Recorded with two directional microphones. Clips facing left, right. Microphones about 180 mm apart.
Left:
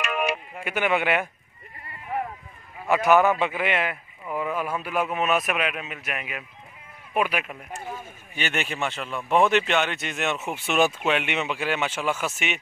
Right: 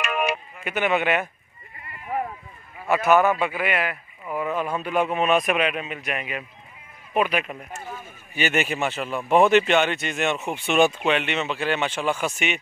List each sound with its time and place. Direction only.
0.0 s music: 60° right (ahead or behind)
0.7 s a man's voice: 10° left (ahead or behind)
2.9 s a man's voice: 15° left (ahead or behind)
4.4 s a man's voice: 10° left (ahead or behind)
8.4 s speech: 5° right (ahead or behind)